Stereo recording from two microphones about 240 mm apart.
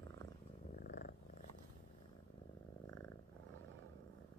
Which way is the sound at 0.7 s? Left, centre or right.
Left.